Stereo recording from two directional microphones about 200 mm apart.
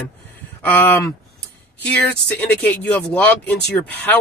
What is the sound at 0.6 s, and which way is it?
Speech, 10° left (ahead or behind).